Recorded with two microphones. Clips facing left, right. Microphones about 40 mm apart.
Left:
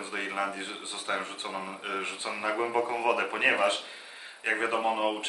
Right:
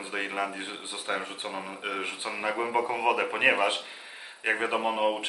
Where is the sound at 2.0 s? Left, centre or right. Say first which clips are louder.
Right 1 dB; centre.